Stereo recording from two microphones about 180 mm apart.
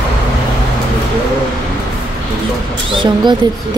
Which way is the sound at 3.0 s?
25° right (ahead or behind).